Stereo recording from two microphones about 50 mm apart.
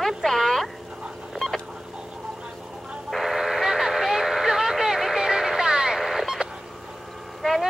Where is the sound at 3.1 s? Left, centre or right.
Centre.